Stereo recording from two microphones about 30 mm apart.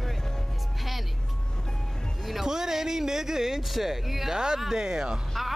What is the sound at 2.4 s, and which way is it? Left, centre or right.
Speech, centre.